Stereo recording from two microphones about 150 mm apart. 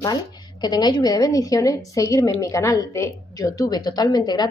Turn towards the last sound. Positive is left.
turn(degrees=25)  # may be behind; listen again after turning